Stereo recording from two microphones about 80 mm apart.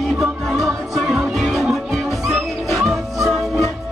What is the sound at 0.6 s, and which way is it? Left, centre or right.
Music, centre.